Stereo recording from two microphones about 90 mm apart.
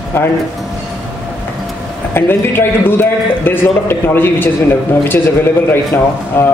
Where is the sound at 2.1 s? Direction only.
25° left (ahead or behind).